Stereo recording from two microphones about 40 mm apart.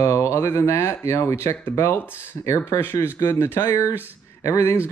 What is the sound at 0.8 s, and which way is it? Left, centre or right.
Speech, left.